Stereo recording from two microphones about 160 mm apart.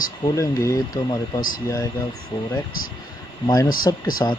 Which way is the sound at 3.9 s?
25° left (ahead or behind).